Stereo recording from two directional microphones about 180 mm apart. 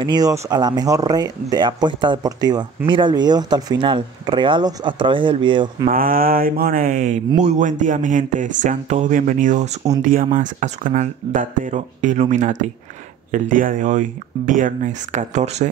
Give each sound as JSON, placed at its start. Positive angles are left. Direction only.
{"t": 0.0, "sound": "speech", "side_deg": -20}
{"t": 5.9, "sound": "speech", "side_deg": -50}